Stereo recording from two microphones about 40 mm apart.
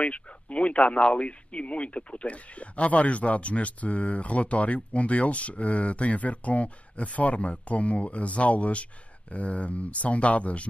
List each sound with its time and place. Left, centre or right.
0.0 s speech: left